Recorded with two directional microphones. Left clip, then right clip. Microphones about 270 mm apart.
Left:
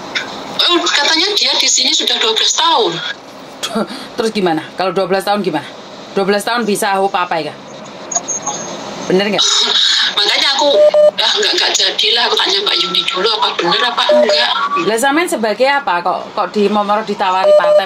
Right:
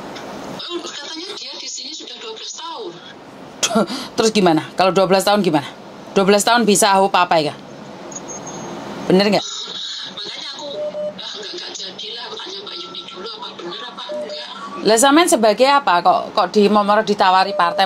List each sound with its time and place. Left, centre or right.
0.1 s a sound: left
3.7 s speech: right
8.1 s a sound: left
9.1 s a woman's voice: right
9.4 s speech: left
14.9 s a woman's voice: right